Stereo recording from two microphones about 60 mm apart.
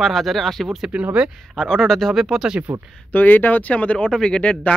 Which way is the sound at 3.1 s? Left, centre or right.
Left.